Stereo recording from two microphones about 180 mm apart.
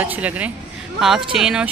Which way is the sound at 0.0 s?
10° right (ahead or behind).